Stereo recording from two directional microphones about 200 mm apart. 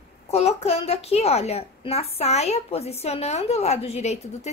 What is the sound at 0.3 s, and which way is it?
A woman's voice, 30° left (ahead or behind).